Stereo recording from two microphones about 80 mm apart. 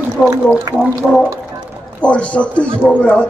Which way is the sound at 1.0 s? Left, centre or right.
Centre.